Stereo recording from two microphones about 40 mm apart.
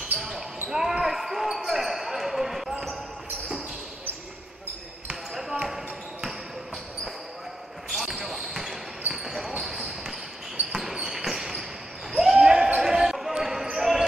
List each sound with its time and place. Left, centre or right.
0.7 s basketball bounce: centre
5.3 s basketball bounce: centre
7.9 s basketball bounce: centre
10.7 s basketball bounce: centre
12.4 s basketball bounce: centre